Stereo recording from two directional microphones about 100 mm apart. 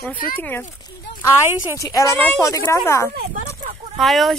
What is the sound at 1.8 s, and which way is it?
Speech, 30° left (ahead or behind).